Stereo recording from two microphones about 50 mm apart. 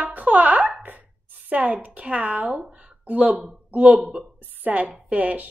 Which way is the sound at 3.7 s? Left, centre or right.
Right.